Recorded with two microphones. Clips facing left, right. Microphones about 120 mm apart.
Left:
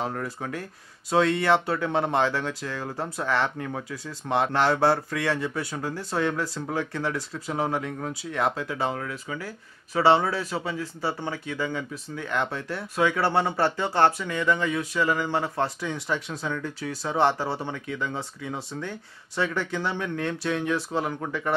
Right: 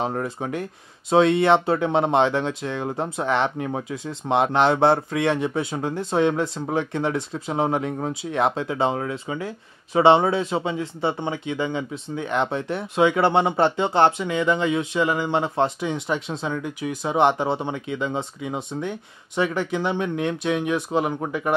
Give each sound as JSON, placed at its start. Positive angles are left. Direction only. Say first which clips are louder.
{"t": 0.0, "sound": "speech", "louder": "right 5 dB", "side_deg": -25}